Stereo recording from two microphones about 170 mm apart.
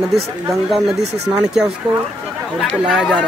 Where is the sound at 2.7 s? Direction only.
5° right (ahead or behind).